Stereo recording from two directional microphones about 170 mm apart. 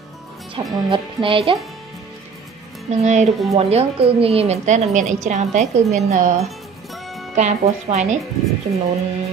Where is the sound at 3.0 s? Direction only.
45° right (ahead or behind).